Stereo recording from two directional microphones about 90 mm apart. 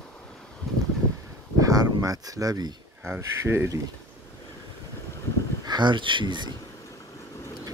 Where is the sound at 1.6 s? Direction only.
40° right (ahead or behind).